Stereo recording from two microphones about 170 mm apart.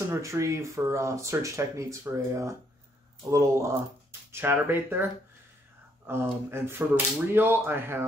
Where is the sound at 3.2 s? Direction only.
20° right (ahead or behind).